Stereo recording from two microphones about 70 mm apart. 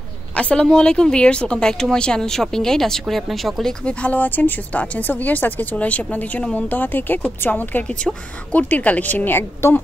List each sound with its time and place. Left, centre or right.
0.4 s speech: centre
3.8 s speech: left